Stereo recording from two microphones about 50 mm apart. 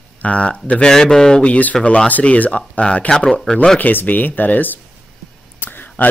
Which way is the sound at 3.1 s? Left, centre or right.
Centre.